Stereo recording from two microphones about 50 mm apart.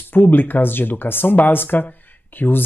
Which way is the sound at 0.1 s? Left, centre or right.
Left.